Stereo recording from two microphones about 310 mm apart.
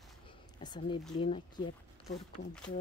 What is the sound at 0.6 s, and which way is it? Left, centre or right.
A woman's voice, centre.